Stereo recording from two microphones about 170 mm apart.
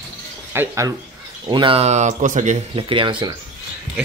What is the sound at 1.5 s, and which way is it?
Speech, 30° right (ahead or behind).